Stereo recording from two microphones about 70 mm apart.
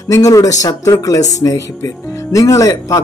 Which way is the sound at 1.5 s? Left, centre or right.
Left.